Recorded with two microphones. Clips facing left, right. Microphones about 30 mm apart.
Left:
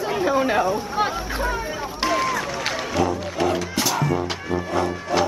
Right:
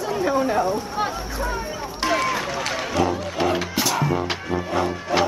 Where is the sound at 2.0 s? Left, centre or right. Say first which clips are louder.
Even; centre.